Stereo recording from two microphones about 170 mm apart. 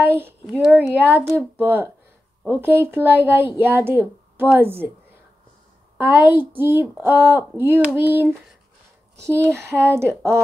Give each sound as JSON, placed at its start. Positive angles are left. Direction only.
{"t": 0.0, "sound": "speech", "side_deg": -10}
{"t": 5.9, "sound": "speech", "side_deg": -10}